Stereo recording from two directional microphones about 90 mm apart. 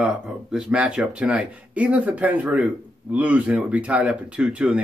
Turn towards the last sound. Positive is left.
turn(degrees=-10)  # may be behind; listen again after turning